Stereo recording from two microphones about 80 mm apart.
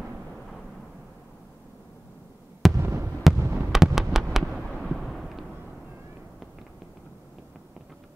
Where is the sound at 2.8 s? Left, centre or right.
Right.